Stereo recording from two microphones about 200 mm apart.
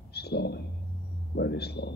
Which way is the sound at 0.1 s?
55° left (ahead or behind).